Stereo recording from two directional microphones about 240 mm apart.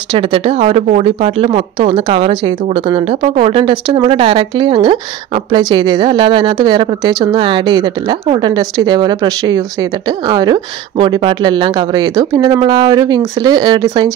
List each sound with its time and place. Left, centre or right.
0.1 s speech: right